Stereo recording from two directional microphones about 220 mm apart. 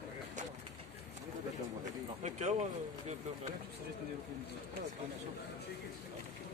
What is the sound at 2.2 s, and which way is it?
Speech, 35° right (ahead or behind).